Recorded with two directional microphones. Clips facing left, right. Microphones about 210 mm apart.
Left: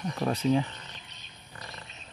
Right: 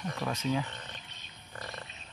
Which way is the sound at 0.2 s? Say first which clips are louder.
Left 7 dB; 30° left (ahead or behind).